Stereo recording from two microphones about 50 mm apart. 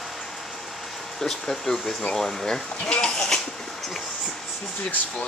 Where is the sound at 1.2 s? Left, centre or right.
Centre.